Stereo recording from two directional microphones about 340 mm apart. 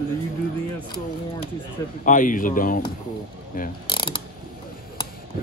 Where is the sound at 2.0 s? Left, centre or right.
Left.